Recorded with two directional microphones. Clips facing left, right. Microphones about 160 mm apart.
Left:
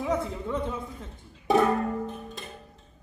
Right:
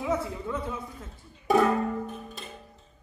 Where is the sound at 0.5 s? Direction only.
5° right (ahead or behind).